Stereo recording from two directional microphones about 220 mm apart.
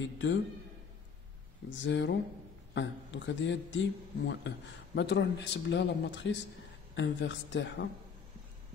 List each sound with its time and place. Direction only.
0.0 s speech: 55° left (ahead or behind)
1.8 s speech: 55° left (ahead or behind)